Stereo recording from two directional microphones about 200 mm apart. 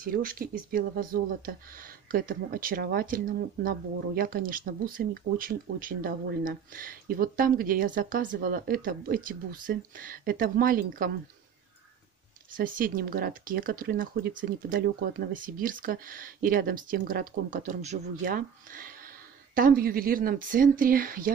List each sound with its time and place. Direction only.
0.0 s speech: 45° right (ahead or behind)
12.5 s speech: 45° right (ahead or behind)